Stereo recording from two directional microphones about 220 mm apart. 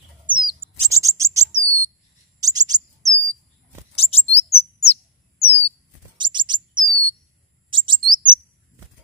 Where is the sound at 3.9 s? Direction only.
25° left (ahead or behind).